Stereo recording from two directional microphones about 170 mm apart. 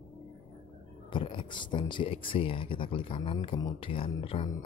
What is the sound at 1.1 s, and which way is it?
Speech, 30° left (ahead or behind).